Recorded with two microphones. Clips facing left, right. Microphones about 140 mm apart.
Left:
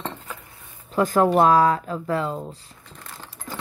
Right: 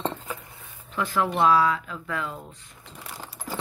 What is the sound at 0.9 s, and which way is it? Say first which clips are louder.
Speech: left 7 dB; 40° left (ahead or behind).